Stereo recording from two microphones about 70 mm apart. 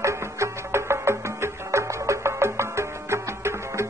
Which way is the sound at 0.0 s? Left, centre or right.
Right.